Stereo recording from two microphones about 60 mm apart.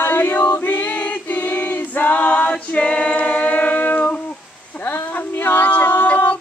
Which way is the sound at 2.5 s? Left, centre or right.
Centre.